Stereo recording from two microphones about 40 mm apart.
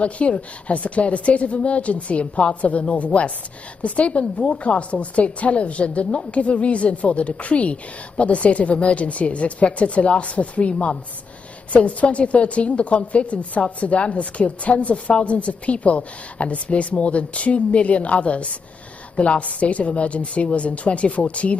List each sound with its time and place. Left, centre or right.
0.0 s a woman's voice: left
11.7 s a woman's voice: left